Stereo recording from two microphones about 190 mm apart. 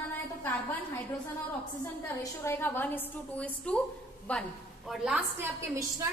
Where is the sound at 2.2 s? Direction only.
15° left (ahead or behind).